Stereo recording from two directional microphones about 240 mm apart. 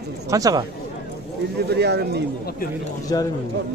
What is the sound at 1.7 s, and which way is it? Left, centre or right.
Speech, right.